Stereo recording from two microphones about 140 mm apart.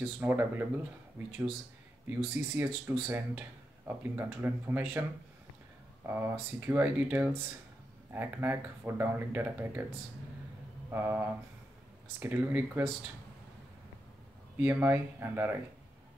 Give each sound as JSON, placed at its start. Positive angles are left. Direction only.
{"t": 0.0, "sound": "speech", "side_deg": -15}
{"t": 2.0, "sound": "speech", "side_deg": -15}
{"t": 6.0, "sound": "speech", "side_deg": -15}
{"t": 14.6, "sound": "speech", "side_deg": -15}